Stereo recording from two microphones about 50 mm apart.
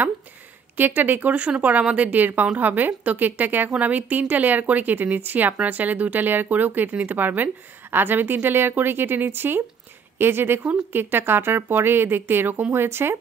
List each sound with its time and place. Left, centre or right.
0.7 s speech: right
1.3 s a woman's voice: right